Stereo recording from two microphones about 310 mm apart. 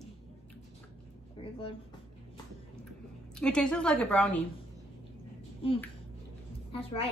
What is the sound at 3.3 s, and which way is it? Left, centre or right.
Speech, centre.